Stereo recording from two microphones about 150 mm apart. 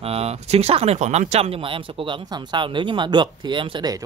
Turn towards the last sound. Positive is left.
turn(degrees=-30)  # may be behind; listen again after turning